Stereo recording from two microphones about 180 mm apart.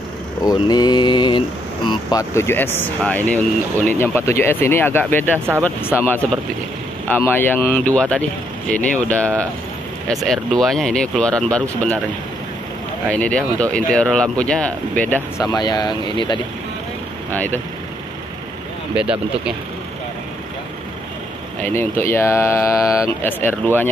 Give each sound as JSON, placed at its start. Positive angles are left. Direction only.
{"t": 0.4, "sound": "mantra", "side_deg": 20}
{"t": 1.9, "sound": "speech", "side_deg": 20}
{"t": 7.1, "sound": "speech", "side_deg": 10}
{"t": 13.1, "sound": "speech", "side_deg": 5}
{"t": 15.4, "sound": "speech", "side_deg": 25}
{"t": 17.3, "sound": "speech", "side_deg": 10}
{"t": 18.9, "sound": "speech", "side_deg": -5}
{"t": 21.6, "sound": "speech", "side_deg": 15}